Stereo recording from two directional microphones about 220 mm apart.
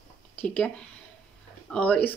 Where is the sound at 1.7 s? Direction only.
5° left (ahead or behind).